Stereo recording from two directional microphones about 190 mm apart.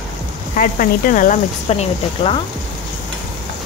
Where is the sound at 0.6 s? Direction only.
45° left (ahead or behind).